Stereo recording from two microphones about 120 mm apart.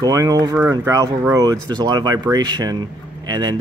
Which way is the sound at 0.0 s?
30° right (ahead or behind).